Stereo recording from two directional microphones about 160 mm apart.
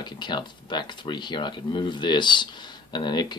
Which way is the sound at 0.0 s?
30° left (ahead or behind).